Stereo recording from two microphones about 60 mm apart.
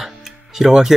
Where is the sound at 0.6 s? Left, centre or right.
Centre.